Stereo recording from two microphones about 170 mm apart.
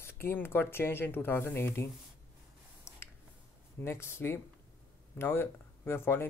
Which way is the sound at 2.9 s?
15° left (ahead or behind).